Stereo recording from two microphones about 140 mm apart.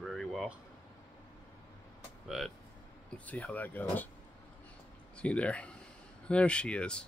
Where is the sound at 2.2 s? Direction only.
Centre (ahead or behind).